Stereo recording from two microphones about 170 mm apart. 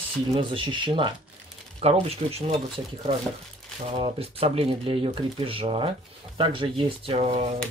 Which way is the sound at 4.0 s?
35° right (ahead or behind).